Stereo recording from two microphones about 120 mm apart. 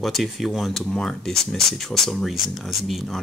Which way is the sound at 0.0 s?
Centre (ahead or behind).